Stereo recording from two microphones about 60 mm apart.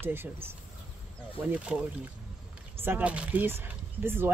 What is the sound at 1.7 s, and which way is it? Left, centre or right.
Speech, right.